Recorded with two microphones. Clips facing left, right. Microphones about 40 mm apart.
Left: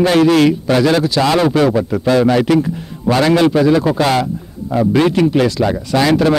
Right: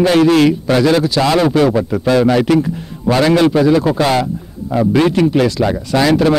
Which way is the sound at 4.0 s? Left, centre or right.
Centre.